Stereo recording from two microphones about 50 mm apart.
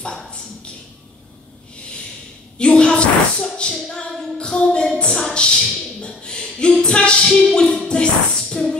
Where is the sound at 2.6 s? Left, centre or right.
Centre.